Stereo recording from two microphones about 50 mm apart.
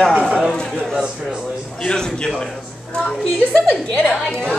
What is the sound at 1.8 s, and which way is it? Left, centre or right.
Speech, centre.